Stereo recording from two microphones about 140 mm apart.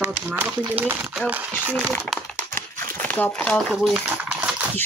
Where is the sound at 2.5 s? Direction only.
15° left (ahead or behind).